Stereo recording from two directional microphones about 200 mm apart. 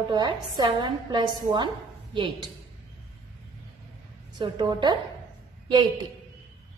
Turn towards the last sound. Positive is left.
turn(degrees=-20)  # may be behind; listen again after turning